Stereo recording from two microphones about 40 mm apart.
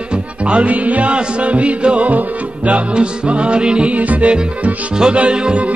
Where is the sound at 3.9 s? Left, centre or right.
Right.